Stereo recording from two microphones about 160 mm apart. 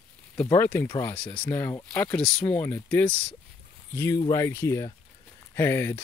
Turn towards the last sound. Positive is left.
turn(degrees=15)  # may be behind; listen again after turning